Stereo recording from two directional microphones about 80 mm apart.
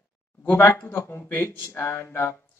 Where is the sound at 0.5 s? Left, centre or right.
Left.